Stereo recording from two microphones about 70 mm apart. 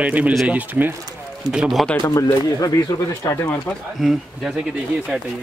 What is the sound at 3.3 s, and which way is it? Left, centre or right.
Speech, left.